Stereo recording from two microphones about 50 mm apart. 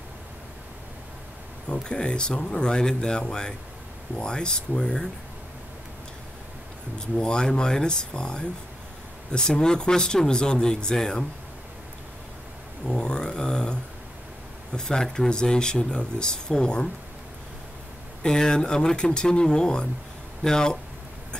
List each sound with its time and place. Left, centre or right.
1.7 s speech: centre
7.2 s speech: centre
12.8 s a sound: centre
14.7 s speech: centre
18.2 s speech: centre